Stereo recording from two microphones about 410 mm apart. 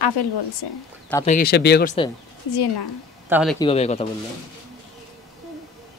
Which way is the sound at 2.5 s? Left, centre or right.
Left.